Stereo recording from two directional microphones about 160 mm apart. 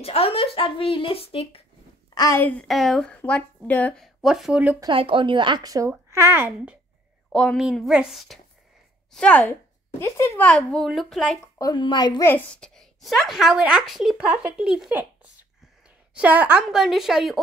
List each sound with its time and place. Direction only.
0.0 s speech: 40° left (ahead or behind)
2.1 s a woman's voice: 20° left (ahead or behind)
2.7 s a woman's voice: centre (ahead or behind)
4.7 s speech: 30° right (ahead or behind); by 6.8 s 10° right (ahead or behind)
7.3 s a woman's voice: centre (ahead or behind)
11.5 s speech: 25° left (ahead or behind)
12.2 s a woman's voice: 15° left (ahead or behind); by 15.0 s 5° right (ahead or behind)
16.2 s a woman's voice: 10° right (ahead or behind)